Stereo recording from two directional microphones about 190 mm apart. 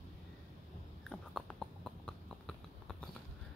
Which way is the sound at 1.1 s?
5° left (ahead or behind).